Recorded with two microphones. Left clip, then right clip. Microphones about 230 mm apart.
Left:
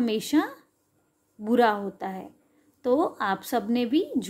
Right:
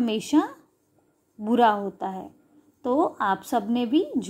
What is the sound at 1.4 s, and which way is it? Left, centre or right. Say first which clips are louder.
A woman's voice: right 2 dB; centre.